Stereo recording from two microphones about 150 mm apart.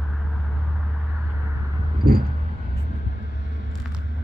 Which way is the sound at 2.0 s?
80° right.